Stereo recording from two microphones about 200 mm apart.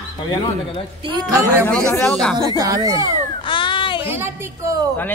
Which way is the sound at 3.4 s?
25° left (ahead or behind).